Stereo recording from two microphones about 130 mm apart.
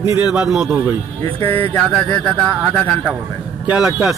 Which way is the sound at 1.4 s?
15° left (ahead or behind).